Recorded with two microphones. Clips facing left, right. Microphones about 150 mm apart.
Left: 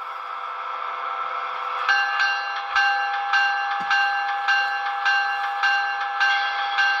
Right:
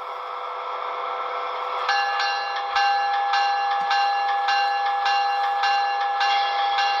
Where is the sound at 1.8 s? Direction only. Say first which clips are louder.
Right 2 dB; 30° right (ahead or behind).